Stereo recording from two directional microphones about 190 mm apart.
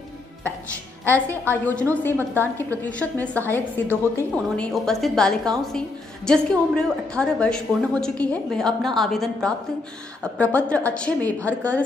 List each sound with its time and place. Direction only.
1.5 s a woman's voice: 10° left (ahead or behind)